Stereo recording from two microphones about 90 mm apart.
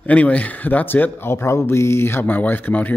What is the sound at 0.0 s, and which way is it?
Speech, 15° left (ahead or behind).